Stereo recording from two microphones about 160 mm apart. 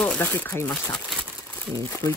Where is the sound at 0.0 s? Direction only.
10° left (ahead or behind).